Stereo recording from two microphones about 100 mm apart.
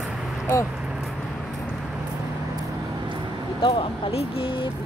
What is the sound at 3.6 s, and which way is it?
Vehicle, 60° left (ahead or behind).